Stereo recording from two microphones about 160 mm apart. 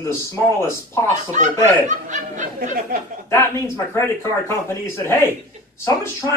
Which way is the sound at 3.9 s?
15° left (ahead or behind).